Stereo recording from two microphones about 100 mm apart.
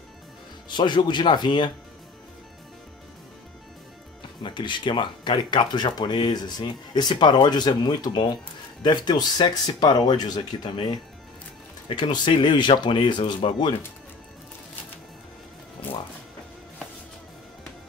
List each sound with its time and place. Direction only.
0.7 s speech: 50° left (ahead or behind)
4.4 s speech: 55° left (ahead or behind)